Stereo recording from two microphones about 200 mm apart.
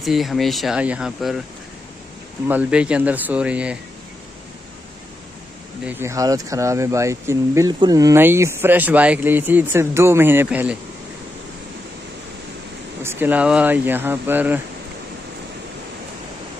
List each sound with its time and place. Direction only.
0.0 s speech: centre (ahead or behind)
2.4 s speech: 5° right (ahead or behind)
5.9 s speech: 10° right (ahead or behind)
13.0 s speech: 10° right (ahead or behind)